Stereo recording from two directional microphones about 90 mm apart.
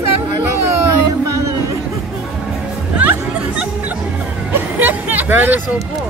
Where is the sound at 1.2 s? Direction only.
35° right (ahead or behind).